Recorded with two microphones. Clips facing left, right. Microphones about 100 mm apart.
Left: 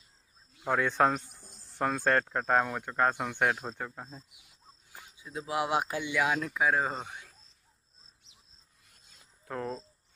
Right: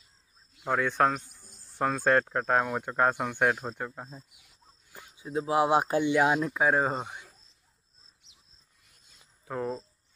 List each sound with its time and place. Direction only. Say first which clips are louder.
0.7 s speech: right 1 dB; centre (ahead or behind)
2.7 s speech: right 2 dB; 15° right (ahead or behind)
5.1 s speech: right 7 dB; 30° right (ahead or behind)
9.4 s speech: right 3 dB; 5° right (ahead or behind)